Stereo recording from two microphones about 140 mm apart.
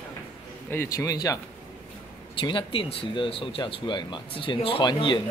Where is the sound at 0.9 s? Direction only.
25° left (ahead or behind).